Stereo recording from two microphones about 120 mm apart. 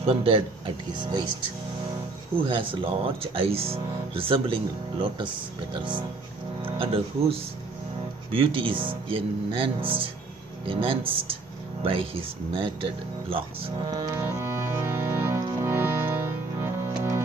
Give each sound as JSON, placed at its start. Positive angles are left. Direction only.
{"t": 0.0, "sound": "speech", "side_deg": -50}
{"t": 2.4, "sound": "speech", "side_deg": -45}
{"t": 5.8, "sound": "music", "side_deg": -40}
{"t": 6.6, "sound": "speech", "side_deg": -50}
{"t": 13.8, "sound": "music", "side_deg": -30}
{"t": 14.2, "sound": "music", "side_deg": -20}